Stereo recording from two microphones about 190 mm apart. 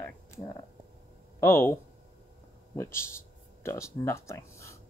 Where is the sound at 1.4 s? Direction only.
15° left (ahead or behind).